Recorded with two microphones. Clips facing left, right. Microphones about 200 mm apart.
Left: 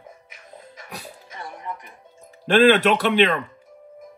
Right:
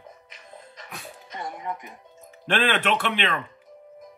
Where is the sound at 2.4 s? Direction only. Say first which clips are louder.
Left 9 dB; 40° left (ahead or behind).